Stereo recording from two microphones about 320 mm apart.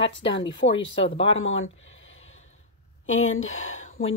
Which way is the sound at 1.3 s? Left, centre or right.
Left.